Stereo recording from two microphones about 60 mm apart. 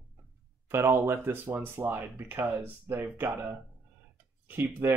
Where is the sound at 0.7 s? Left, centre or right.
Right.